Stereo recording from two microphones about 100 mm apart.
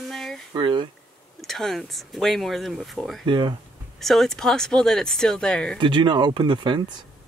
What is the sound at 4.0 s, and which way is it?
Speech, centre (ahead or behind).